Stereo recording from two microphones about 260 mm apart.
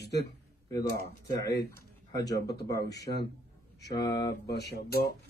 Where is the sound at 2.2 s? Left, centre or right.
Left.